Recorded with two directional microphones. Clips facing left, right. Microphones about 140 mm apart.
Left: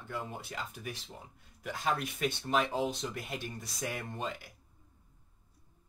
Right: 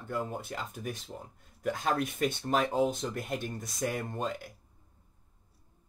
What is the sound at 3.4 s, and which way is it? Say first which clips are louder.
Speech: right 5 dB; 50° right (ahead or behind).